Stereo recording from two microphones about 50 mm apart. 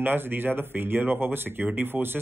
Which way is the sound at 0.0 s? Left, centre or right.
Right.